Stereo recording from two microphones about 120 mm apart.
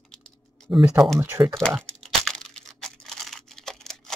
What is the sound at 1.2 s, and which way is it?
Speech, 20° right (ahead or behind).